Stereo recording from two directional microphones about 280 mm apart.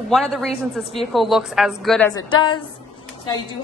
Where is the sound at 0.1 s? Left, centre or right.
Centre.